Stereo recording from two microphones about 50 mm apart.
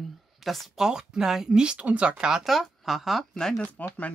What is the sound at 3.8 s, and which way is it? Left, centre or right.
Speech, left.